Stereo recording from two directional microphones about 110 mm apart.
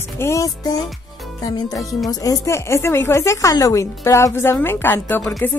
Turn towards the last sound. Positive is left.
turn(degrees=15)  # may be behind; listen again after turning